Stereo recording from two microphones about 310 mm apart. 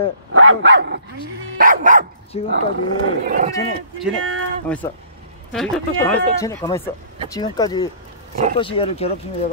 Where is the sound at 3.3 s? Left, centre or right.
Right.